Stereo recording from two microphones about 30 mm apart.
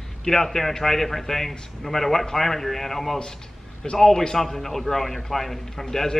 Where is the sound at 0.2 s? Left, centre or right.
Centre.